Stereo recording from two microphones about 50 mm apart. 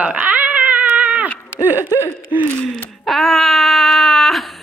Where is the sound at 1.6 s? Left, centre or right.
Right.